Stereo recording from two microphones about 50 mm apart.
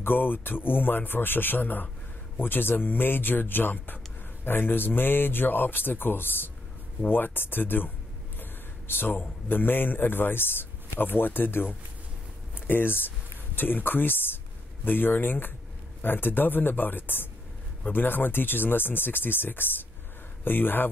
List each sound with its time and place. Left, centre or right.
0.0 s a man's voice: left